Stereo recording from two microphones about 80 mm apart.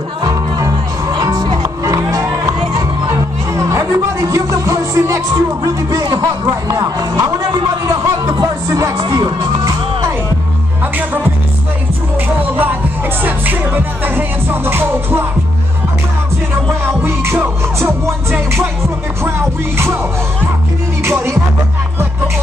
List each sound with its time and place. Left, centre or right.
0.2 s music: right
6.0 s speech: right
6.7 s speech: right
7.8 s music: right
14.0 s music: right
17.0 s music: right
21.0 s music: right